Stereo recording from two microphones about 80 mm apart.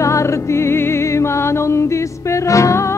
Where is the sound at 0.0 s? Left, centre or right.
Left.